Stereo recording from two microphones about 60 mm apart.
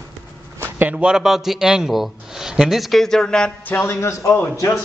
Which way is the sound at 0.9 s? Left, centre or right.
Centre.